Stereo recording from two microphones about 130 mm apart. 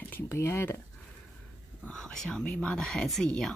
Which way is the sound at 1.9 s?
5° left (ahead or behind).